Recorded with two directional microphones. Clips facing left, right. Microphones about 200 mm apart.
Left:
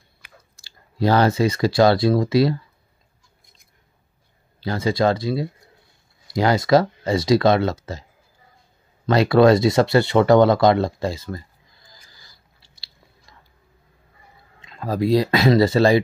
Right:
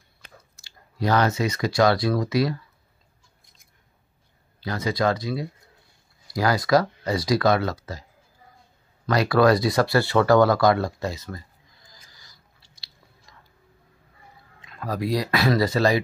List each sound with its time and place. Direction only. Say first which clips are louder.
0.6 s speech: left 6 dB; 30° left (ahead or behind)
4.6 s speech: left 5 dB; 30° left (ahead or behind)
9.0 s speech: left 4 dB; 25° left (ahead or behind)
11.9 s chewing: left 3 dB; 30° left (ahead or behind)
14.6 s speech: left 5 dB; 25° left (ahead or behind)